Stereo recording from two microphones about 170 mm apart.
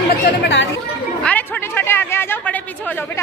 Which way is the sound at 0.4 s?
90° left.